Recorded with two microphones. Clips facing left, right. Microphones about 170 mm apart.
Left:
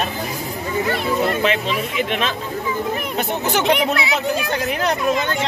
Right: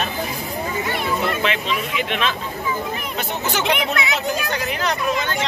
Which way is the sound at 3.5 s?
55° left (ahead or behind).